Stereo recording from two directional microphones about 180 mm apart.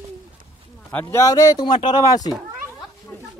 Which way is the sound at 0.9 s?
15° left (ahead or behind).